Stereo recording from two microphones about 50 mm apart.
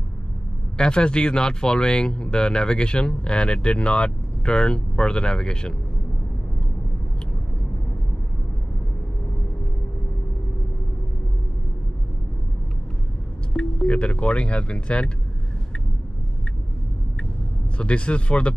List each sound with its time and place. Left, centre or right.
0.7 s speech: centre
13.5 s speech: centre
17.7 s speech: left